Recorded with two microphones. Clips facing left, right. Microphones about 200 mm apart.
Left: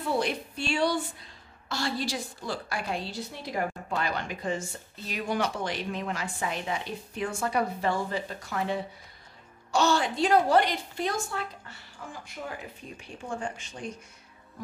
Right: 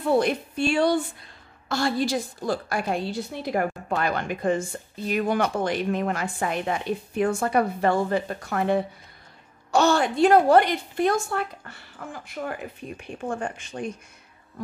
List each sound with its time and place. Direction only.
0.1 s a woman's voice: 50° right (ahead or behind)